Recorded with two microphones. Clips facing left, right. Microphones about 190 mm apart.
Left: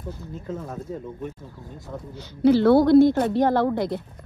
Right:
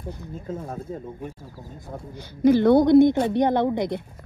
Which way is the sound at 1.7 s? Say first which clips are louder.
Left 1 dB; 45° right (ahead or behind).